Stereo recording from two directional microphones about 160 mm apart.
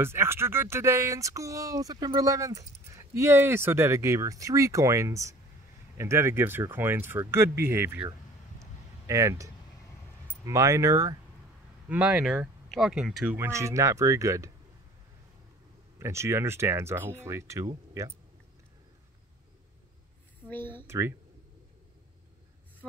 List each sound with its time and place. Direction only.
0.0 s speech: 15° right (ahead or behind)
11.9 s speech: 10° right (ahead or behind)
16.0 s speech: 15° right (ahead or behind)
20.4 s speech: 10° left (ahead or behind)
20.8 s speech: 15° right (ahead or behind)